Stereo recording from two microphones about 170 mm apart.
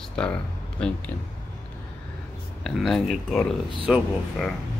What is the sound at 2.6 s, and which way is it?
Speech, centre (ahead or behind).